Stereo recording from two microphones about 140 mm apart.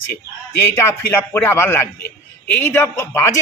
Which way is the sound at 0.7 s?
20° left (ahead or behind).